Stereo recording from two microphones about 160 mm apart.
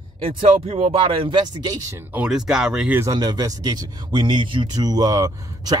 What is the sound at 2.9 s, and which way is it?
Speech, 20° right (ahead or behind).